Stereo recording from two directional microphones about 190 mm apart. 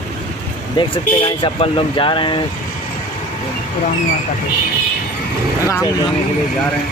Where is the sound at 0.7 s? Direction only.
25° left (ahead or behind).